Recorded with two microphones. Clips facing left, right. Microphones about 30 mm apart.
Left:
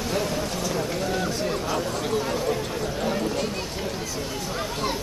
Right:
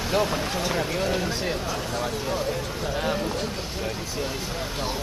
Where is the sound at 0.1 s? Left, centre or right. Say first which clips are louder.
Right 4 dB; right.